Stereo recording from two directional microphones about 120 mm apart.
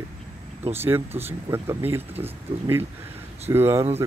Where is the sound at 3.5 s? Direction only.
20° right (ahead or behind).